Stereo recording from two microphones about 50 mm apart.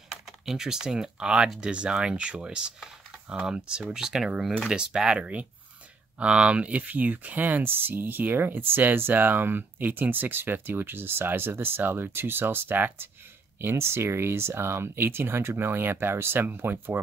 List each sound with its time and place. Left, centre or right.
0.1 s speech: centre; by 13.1 s right
13.6 s speech: right